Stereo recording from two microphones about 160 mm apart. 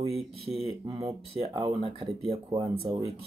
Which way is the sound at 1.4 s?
35° right (ahead or behind).